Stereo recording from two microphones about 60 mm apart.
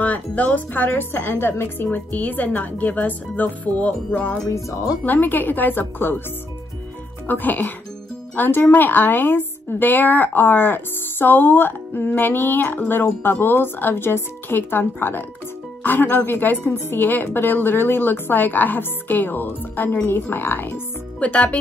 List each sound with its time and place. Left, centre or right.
0.0 s speech: left
4.5 s speech: left
5.0 s a woman's voice: left
7.2 s a woman's voice: left
21.2 s speech: left